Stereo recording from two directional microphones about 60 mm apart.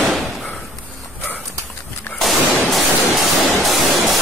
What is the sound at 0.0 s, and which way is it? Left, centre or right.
Thump, centre.